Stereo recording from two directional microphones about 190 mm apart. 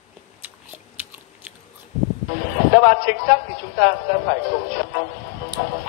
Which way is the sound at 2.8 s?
50° left (ahead or behind).